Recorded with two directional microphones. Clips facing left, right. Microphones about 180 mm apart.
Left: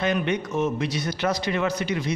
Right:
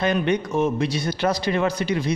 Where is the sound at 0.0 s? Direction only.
35° right (ahead or behind).